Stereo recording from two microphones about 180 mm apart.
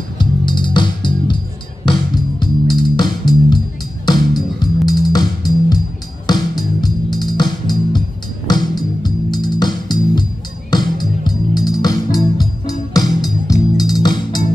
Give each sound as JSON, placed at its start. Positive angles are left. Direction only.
{"t": 0.2, "sound": "music", "side_deg": 25}
{"t": 2.4, "sound": "music", "side_deg": 25}
{"t": 7.2, "sound": "music", "side_deg": 25}